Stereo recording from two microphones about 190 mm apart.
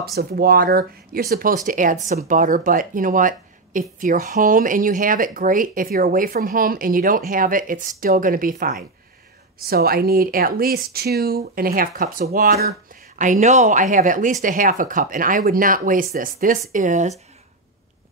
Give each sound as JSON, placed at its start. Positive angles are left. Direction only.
{"t": 0.0, "sound": "speech", "side_deg": -55}